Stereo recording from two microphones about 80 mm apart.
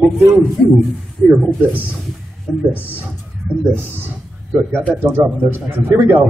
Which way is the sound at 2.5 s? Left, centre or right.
Centre.